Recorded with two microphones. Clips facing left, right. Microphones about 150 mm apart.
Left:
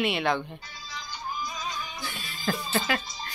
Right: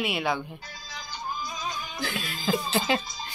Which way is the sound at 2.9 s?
25° right (ahead or behind).